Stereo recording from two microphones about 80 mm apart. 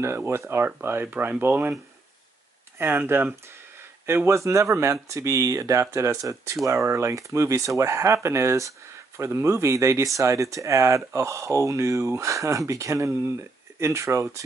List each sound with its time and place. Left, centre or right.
0.0 s speech: right
2.8 s speech: right
4.1 s speech: right